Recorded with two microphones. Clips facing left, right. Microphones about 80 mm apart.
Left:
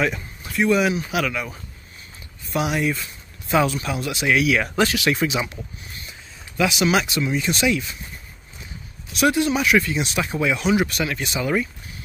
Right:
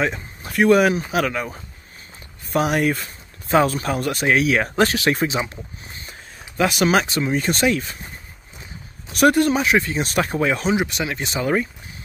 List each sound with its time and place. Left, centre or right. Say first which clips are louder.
0.0 s a sound: even; right
0.5 s speech: right 4 dB; right
6.6 s speech: right 2 dB; right
9.1 s speech: right 4 dB; right
9.6 s speech: even; right
10.8 s speech: left 1 dB; right